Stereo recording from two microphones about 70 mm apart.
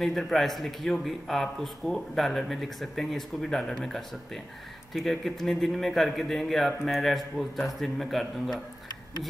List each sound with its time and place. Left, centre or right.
0.0 s a man's voice: centre